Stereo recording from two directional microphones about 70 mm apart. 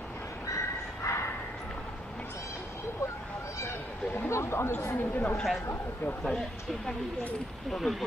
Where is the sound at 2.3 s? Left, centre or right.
Left.